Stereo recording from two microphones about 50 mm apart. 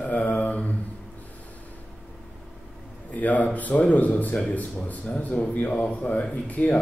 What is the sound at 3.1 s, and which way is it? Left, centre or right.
Speech, left.